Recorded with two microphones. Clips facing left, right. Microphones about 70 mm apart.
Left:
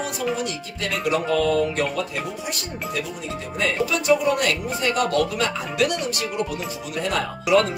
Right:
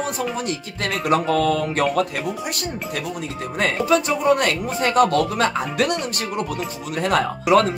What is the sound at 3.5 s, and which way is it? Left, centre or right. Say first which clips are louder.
Speech: right 5 dB; right.